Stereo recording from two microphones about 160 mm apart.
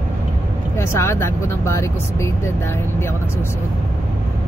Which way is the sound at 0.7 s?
15° left (ahead or behind).